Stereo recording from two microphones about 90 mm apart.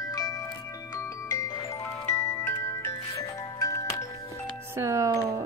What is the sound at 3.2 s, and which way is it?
Music, 40° left (ahead or behind).